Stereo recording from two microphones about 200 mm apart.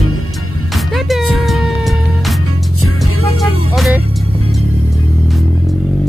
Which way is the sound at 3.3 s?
Centre (ahead or behind).